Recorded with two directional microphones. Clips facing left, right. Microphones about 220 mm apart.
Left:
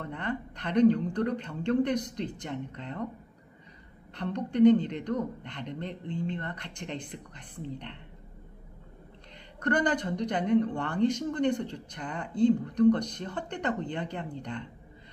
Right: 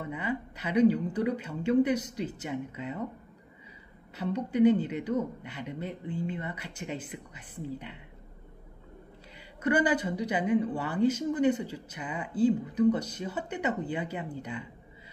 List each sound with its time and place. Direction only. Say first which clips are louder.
0.0 s speech: right 1 dB; 5° right (ahead or behind)
4.1 s speech: right 1 dB; 5° right (ahead or behind)
9.6 s speech: right 1 dB; 5° right (ahead or behind)